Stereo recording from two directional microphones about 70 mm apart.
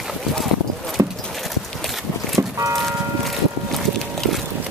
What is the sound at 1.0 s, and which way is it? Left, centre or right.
Clip-clop, right.